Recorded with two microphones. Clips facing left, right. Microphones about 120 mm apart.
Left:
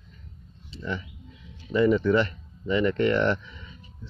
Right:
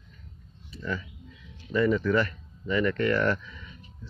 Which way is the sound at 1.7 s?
25° left (ahead or behind).